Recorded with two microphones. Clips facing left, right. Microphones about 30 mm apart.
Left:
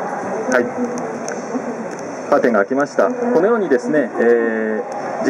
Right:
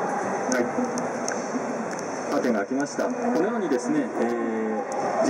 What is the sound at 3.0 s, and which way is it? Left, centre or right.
Speech, centre.